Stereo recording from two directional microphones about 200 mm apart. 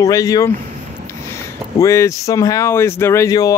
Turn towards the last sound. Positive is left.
turn(degrees=15)  # may be behind; listen again after turning